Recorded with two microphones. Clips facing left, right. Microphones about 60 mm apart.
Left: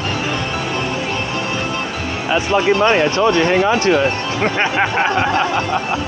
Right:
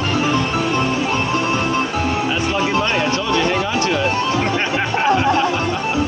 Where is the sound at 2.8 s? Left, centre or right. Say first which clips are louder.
Left 6 dB; left.